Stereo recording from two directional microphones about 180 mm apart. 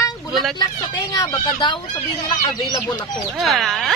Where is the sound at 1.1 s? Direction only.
20° left (ahead or behind).